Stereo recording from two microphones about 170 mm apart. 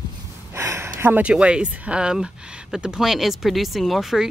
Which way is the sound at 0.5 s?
15° right (ahead or behind).